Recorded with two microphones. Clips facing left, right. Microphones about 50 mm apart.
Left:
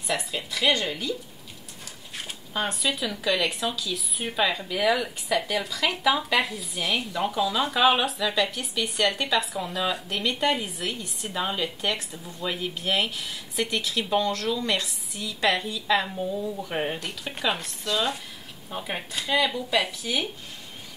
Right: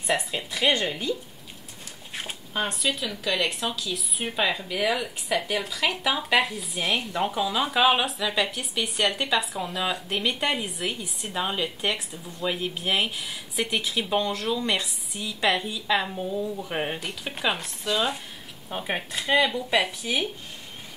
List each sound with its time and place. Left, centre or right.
0.0 s speech: right
2.5 s speech: centre
6.8 s speech: right
7.2 s speech: centre